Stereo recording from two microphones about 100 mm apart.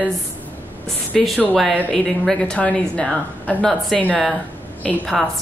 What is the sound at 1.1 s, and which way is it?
A woman's voice, centre (ahead or behind).